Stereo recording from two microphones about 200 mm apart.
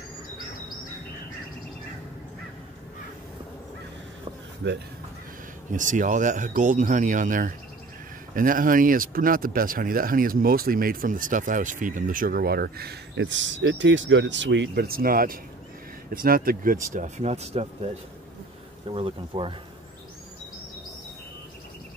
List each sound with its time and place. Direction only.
4.6 s speech: 60° right (ahead or behind)
5.7 s speech: 40° right (ahead or behind)